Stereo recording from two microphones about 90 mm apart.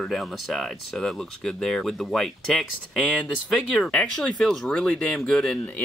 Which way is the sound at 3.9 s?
10° left (ahead or behind).